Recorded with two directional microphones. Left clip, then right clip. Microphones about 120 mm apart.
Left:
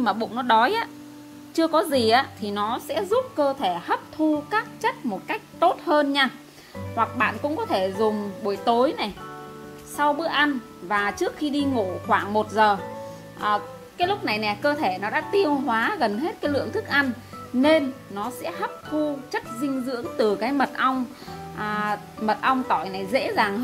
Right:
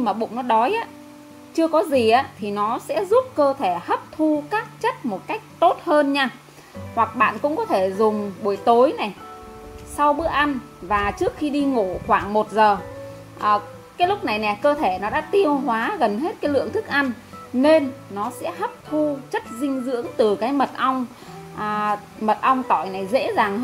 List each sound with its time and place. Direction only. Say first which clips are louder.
0.1 s speech: right 2 dB; 25° left (ahead or behind)
1.6 s a woman's voice: right 3 dB; 20° right (ahead or behind)